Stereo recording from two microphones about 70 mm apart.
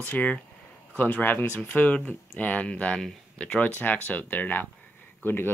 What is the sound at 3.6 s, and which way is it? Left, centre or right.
Speech, left.